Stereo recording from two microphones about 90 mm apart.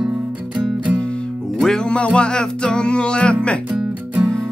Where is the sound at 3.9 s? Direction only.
20° right (ahead or behind).